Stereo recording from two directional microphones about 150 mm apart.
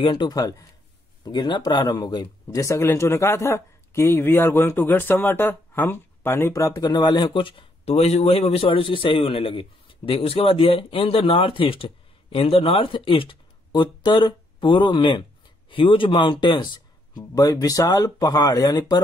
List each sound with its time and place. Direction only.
0.0 s speech: 30° left (ahead or behind)